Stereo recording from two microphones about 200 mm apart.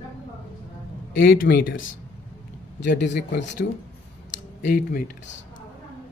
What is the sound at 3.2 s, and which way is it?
Speech, 60° left (ahead or behind).